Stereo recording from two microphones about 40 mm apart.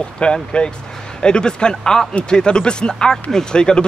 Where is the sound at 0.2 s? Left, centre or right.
Left.